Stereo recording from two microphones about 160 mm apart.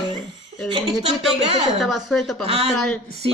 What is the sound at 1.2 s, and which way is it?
Speech, centre (ahead or behind).